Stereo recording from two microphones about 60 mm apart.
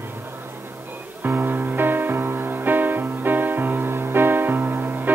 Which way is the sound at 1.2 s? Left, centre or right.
Right.